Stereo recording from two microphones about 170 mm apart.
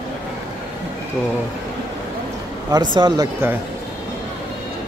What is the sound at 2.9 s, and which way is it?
Speech, 25° right (ahead or behind).